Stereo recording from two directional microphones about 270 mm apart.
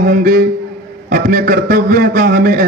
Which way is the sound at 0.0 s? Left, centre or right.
Right.